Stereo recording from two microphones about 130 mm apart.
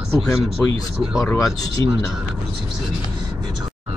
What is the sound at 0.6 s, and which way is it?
Speech, 20° left (ahead or behind).